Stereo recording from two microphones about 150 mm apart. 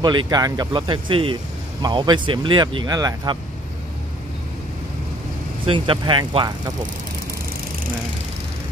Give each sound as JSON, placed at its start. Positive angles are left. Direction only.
{"t": 0.0, "sound": "speech", "side_deg": -25}
{"t": 5.7, "sound": "speech", "side_deg": -35}